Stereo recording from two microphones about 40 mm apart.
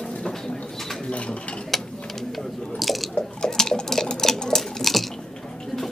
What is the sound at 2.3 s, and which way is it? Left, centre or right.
Squish, centre.